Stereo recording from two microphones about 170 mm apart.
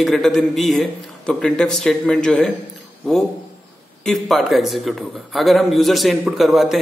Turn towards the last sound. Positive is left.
turn(degrees=0)  # may be behind; listen again after turning